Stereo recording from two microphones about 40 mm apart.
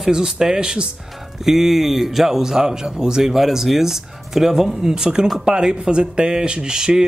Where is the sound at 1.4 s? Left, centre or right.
Centre.